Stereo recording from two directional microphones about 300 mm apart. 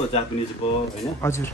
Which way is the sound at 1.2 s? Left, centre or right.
Centre.